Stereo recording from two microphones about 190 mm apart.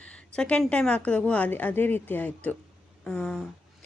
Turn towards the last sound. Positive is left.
turn(degrees=5)  # may be behind; listen again after turning